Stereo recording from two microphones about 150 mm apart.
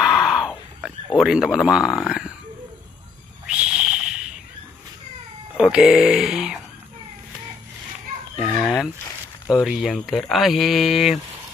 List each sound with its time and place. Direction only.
0.0 s a sound: centre (ahead or behind)
0.8 s speech: 5° right (ahead or behind)
3.4 s a sound: 5° right (ahead or behind)
5.6 s speech: 5° right (ahead or behind)
8.4 s chicken: 5° left (ahead or behind)
9.5 s speech: centre (ahead or behind)